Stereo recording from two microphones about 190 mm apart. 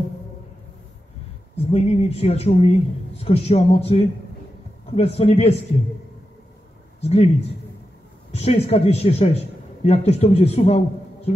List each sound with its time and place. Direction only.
1.6 s a man's voice: 30° left (ahead or behind)
7.0 s a man's voice: 35° left (ahead or behind)
8.3 s a man's voice: 35° left (ahead or behind)